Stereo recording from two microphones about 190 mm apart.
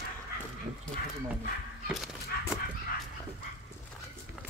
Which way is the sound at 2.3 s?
55° left (ahead or behind).